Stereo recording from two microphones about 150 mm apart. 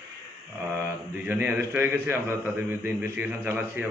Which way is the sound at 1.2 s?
10° right (ahead or behind).